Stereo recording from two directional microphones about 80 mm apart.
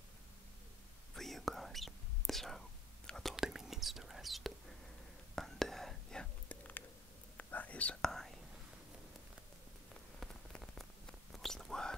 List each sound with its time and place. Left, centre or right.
1.1 s whispering: centre
7.3 s whispering: centre
10.2 s rain on surface: centre
10.8 s whispering: centre